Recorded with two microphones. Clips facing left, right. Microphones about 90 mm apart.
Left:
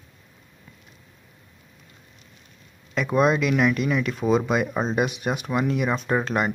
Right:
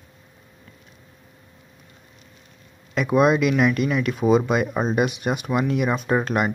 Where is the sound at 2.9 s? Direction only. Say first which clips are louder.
Right 2 dB; 5° right (ahead or behind).